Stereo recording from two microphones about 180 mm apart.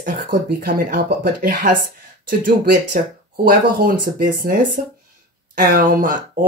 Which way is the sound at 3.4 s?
55° right (ahead or behind).